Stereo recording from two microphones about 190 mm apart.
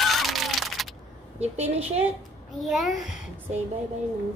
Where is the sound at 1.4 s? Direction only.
35° right (ahead or behind).